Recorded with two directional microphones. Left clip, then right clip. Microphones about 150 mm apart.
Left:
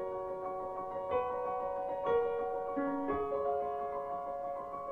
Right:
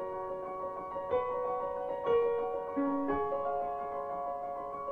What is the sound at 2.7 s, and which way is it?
Music, 20° right (ahead or behind).